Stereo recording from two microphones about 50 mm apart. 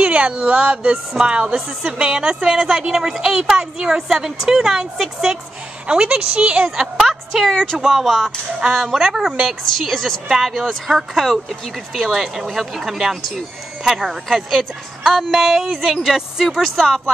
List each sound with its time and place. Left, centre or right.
0.0 s a woman's voice: right
5.9 s a woman's voice: right
7.0 s a woman's voice: centre
7.5 s speech: centre
7.8 s a woman's voice: centre
9.7 s speech: centre
10.3 s speech: centre
16.4 s speech: centre